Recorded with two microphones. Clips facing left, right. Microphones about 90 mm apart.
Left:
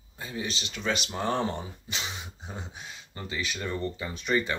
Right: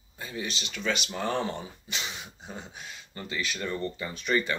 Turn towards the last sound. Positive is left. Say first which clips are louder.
# even
turn(degrees=20)  # may be behind; listen again after turning